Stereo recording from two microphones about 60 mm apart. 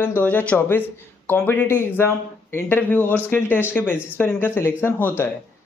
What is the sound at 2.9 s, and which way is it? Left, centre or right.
Speech, left.